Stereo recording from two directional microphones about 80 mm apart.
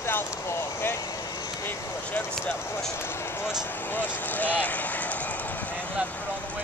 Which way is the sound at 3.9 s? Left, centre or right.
Left.